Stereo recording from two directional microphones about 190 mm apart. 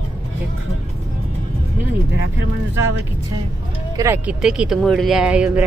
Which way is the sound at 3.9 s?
15° right (ahead or behind).